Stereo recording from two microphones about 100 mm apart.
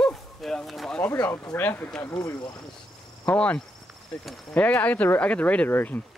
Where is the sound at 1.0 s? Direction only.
25° left (ahead or behind).